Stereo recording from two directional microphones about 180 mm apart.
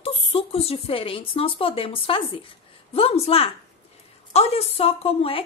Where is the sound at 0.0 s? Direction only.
30° left (ahead or behind).